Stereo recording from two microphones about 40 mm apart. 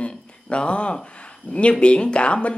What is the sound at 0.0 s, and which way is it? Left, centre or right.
A woman's voice, left.